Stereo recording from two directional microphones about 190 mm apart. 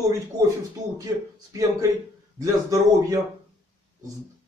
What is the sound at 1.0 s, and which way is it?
Speech, 20° right (ahead or behind).